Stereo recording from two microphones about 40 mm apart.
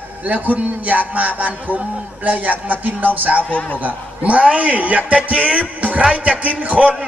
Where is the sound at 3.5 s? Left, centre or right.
Left.